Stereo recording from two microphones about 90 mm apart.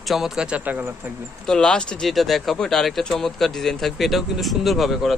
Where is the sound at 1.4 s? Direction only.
5° left (ahead or behind).